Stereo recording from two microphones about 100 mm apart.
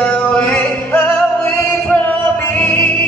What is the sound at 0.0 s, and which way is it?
Music, 10° left (ahead or behind).